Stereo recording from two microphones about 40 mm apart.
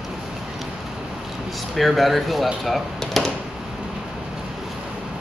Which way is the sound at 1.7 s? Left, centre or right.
Centre.